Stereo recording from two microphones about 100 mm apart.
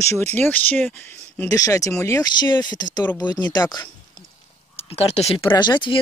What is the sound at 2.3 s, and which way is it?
Speech, 45° left (ahead or behind).